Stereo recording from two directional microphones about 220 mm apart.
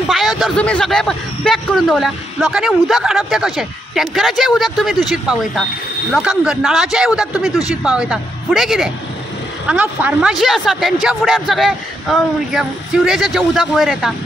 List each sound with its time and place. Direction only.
0.1 s speech: centre (ahead or behind)